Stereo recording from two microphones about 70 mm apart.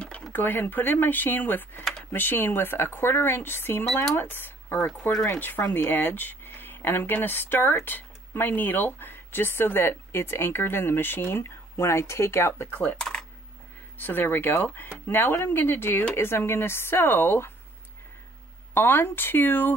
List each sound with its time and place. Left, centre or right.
0.3 s speech: left
12.8 s speech: centre
13.9 s speech: left
18.7 s speech: left